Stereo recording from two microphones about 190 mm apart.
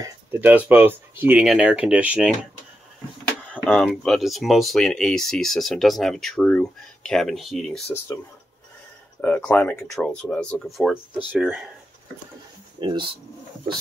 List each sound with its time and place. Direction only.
0.0 s speech: 10° right (ahead or behind)
3.5 s speech: 5° left (ahead or behind)
9.2 s speech: 10° left (ahead or behind)
12.8 s speech: 25° right (ahead or behind)